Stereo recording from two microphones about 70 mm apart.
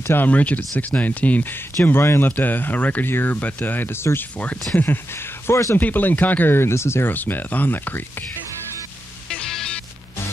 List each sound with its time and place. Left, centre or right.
0.0 s speech: left
0.3 s speech: left
1.9 s speech: left
5.5 s speech: left
5.8 s speech: left
9.5 s music: centre